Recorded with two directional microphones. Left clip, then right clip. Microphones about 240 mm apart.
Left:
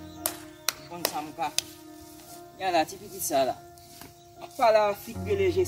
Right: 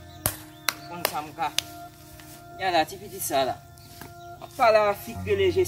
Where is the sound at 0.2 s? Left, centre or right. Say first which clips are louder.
Right 3 dB; centre.